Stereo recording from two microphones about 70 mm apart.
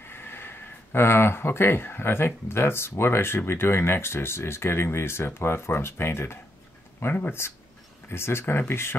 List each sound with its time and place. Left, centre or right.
0.0 s speech: left